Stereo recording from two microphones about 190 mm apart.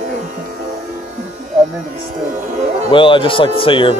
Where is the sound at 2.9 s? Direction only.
25° left (ahead or behind).